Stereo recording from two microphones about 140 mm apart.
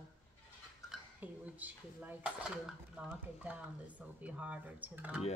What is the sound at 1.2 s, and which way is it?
Speech, 10° right (ahead or behind).